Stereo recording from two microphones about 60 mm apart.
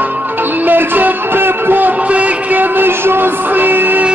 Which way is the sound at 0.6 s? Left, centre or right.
Right.